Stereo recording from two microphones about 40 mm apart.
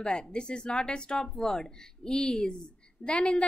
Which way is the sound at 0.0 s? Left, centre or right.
Left.